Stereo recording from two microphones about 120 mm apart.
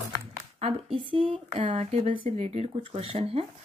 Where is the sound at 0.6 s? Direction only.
50° right (ahead or behind).